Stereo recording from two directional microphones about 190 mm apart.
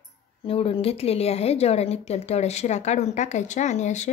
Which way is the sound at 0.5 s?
30° left (ahead or behind).